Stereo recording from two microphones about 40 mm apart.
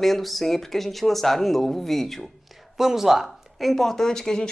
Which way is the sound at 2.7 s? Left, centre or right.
Centre.